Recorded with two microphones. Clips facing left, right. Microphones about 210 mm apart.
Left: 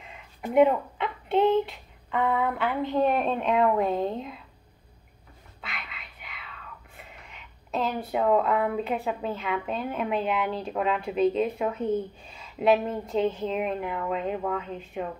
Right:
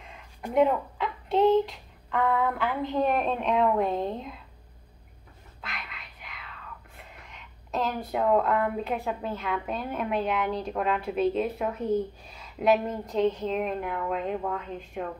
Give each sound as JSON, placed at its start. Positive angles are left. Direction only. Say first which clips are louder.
{"t": 0.0, "sound": "a sound", "louder": "left 2 dB", "side_deg": 5}
{"t": 1.3, "sound": "speech", "louder": "right 1 dB", "side_deg": 0}
{"t": 5.6, "sound": "music", "louder": "even", "side_deg": 0}
{"t": 7.0, "sound": "speech", "louder": "left 1 dB", "side_deg": 0}
{"t": 12.3, "sound": "a sound", "louder": "left 2 dB", "side_deg": -5}
{"t": 13.1, "sound": "speech", "louder": "right 1 dB", "side_deg": 5}